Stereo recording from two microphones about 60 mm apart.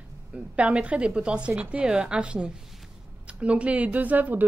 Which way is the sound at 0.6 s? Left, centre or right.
Right.